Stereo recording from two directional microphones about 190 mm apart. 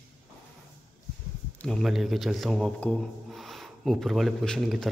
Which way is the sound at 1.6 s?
Centre (ahead or behind).